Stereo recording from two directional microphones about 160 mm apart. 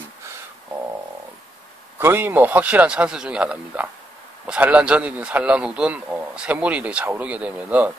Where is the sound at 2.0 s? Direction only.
15° right (ahead or behind).